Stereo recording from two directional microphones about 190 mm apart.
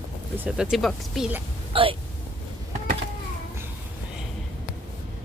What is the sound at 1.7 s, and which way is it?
Speech, 30° right (ahead or behind).